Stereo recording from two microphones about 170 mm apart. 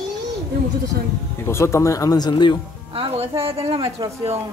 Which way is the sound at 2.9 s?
35° right (ahead or behind).